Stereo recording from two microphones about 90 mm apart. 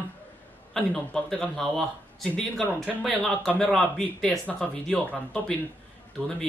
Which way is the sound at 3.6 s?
10° left (ahead or behind).